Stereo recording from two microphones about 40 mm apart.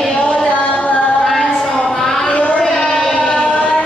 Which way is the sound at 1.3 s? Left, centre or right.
Centre.